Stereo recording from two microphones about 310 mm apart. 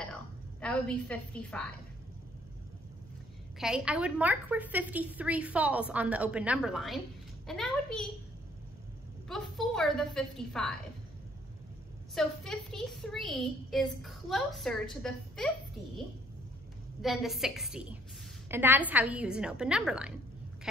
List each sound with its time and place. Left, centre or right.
0.1 s a sound: centre
3.5 s a woman's voice: centre
9.3 s a woman's voice: centre
12.2 s a woman's voice: centre
17.0 s a woman's voice: centre